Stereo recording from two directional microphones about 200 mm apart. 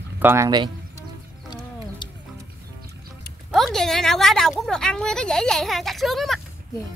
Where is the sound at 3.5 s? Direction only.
Centre (ahead or behind).